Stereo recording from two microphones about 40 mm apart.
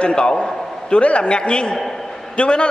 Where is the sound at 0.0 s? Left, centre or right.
Left.